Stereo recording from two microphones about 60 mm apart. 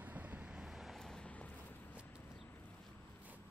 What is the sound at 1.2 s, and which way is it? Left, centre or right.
Clip-clop, left.